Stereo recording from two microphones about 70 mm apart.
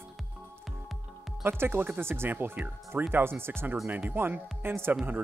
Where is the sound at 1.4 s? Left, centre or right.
Right.